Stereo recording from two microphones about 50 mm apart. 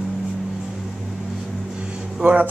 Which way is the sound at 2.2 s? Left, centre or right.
Right.